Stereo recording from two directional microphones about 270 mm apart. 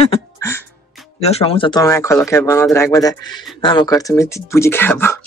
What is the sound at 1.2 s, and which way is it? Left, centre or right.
Speech, left.